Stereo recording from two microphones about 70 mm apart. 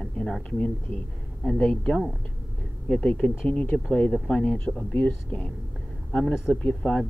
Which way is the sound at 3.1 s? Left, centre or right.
Centre.